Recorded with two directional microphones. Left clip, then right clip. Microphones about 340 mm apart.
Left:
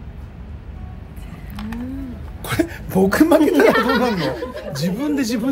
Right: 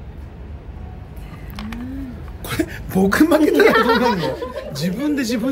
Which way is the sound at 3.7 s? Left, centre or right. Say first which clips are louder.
Right 2 dB; centre.